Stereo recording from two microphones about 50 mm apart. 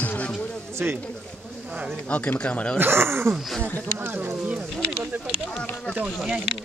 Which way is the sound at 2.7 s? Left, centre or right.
Right.